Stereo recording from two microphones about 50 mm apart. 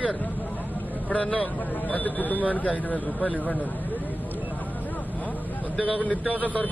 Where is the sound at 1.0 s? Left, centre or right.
Left.